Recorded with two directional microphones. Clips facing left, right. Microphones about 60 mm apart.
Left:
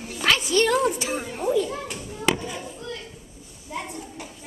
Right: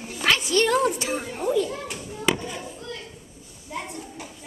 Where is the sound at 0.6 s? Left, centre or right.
Centre.